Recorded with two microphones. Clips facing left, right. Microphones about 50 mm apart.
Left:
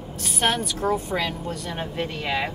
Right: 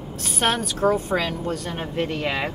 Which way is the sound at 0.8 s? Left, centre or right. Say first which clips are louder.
Right 4 dB; right.